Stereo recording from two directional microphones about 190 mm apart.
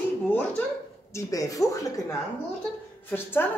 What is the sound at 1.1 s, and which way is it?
A woman's voice, 15° left (ahead or behind).